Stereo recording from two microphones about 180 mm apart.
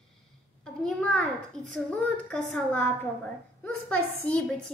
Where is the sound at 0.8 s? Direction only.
5° left (ahead or behind).